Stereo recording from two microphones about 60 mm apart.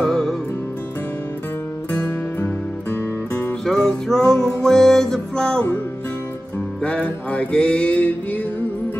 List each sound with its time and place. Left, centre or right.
0.0 s music: centre
3.6 s music: centre
6.8 s music: centre